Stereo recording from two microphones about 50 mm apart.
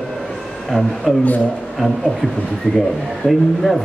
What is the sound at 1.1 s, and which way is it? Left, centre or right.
Speech, centre.